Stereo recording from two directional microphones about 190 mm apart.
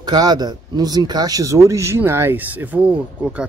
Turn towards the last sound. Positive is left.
turn(degrees=-5)  # may be behind; listen again after turning